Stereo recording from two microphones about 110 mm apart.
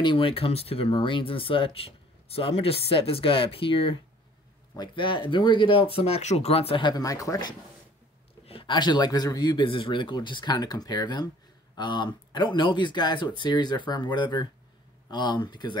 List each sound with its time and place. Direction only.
0.0 s speech: 50° left (ahead or behind)
6.8 s speech: 35° left (ahead or behind)
8.5 s speech: 50° left (ahead or behind)